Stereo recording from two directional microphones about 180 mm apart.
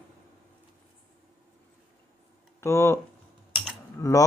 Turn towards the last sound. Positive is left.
turn(degrees=20)  # may be behind; listen again after turning